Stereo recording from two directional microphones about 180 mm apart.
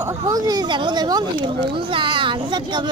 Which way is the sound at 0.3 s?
20° right (ahead or behind).